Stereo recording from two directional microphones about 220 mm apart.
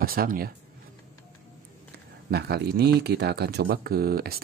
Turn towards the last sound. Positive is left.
turn(degrees=-45)  # may be behind; listen again after turning